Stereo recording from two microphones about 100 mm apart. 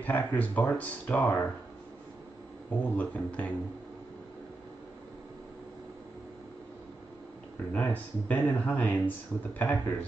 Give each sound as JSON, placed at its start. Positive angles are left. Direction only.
{"t": 0.0, "sound": "speech", "side_deg": 20}
{"t": 2.8, "sound": "speech", "side_deg": 15}
{"t": 7.7, "sound": "speech", "side_deg": 15}